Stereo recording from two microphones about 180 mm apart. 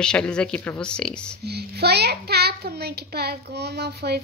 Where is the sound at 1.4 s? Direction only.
65° right (ahead or behind).